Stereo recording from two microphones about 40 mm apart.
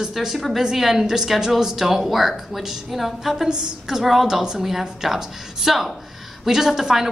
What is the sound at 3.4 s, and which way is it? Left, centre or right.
Speech, right.